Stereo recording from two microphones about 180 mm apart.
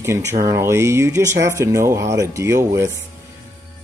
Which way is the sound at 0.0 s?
15° right (ahead or behind).